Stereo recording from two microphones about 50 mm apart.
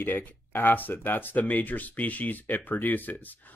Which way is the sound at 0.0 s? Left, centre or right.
Left.